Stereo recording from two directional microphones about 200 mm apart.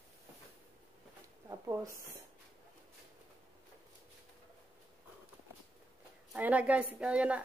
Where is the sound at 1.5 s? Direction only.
15° right (ahead or behind).